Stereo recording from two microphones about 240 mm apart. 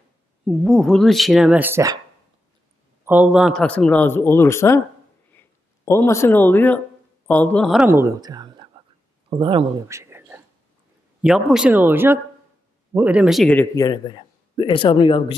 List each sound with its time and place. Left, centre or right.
0.5 s speech: centre
3.1 s speech: centre
5.9 s a man's voice: centre